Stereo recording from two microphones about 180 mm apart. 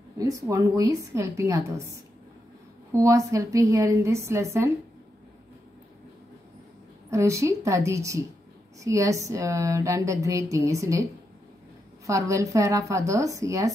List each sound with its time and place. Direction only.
0.2 s speech: 20° right (ahead or behind)
2.9 s speech: 15° right (ahead or behind)
7.1 s speech: 15° right (ahead or behind)
12.1 s speech: 15° right (ahead or behind)